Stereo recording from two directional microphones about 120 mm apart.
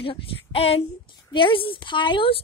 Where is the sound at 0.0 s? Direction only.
50° left (ahead or behind).